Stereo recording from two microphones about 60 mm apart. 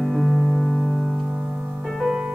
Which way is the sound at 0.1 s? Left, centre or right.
Centre.